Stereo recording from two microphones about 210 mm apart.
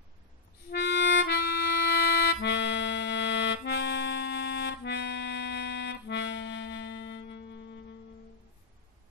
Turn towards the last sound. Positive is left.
turn(degrees=60)  # may be behind; listen again after turning